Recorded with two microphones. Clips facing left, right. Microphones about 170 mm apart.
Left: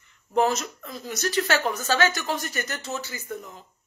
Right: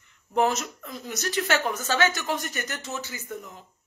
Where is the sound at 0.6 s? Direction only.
20° right (ahead or behind).